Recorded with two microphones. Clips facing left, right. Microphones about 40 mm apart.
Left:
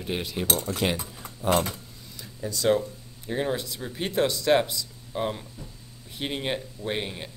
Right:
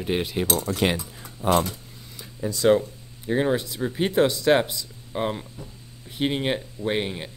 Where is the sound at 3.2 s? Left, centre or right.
Right.